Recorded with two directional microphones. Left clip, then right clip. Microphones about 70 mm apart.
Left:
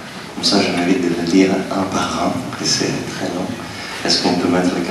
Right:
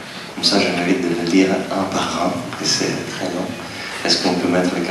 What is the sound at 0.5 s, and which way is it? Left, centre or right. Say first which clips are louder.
Speech: left 2 dB; right.